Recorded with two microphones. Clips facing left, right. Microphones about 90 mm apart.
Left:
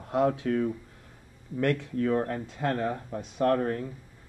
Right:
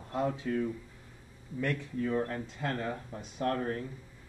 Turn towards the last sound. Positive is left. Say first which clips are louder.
# left 7 dB
turn(degrees=65)  # may be behind; listen again after turning